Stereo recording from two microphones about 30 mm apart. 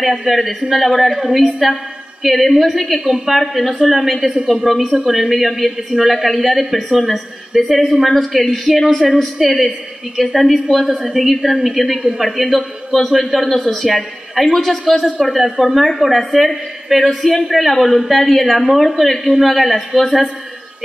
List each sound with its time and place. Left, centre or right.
0.2 s a woman's voice: centre
12.9 s a man's voice: right
13.3 s a woman's voice: centre